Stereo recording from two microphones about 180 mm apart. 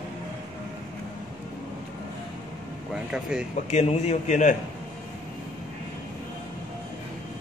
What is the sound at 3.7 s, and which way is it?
Speech, 35° left (ahead or behind).